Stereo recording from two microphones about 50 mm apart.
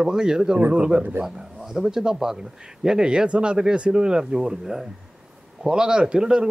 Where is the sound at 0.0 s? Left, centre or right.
Centre.